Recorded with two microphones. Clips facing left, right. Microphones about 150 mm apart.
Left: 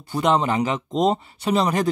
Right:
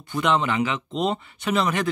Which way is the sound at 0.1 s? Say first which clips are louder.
Left 3 dB; 35° left (ahead or behind).